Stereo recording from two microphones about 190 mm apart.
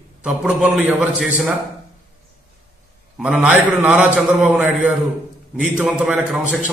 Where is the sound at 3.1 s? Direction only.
Centre (ahead or behind).